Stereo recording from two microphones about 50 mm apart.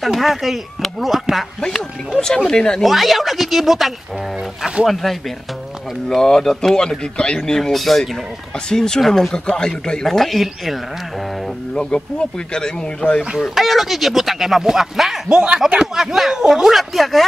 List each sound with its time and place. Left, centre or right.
0.0 s speech: centre
1.6 s speech: centre
2.8 s speech: centre
7.7 s speech: centre
8.6 s speech: centre
9.0 s speech: centre
9.3 s speech: centre
10.0 s speech: centre
11.7 s speech: centre
13.6 s speech: centre
15.2 s speech: centre